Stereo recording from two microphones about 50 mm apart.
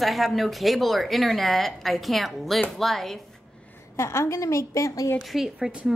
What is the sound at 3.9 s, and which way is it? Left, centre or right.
A woman's voice, left.